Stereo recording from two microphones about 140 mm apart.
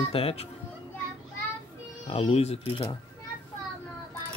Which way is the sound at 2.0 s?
45° left (ahead or behind).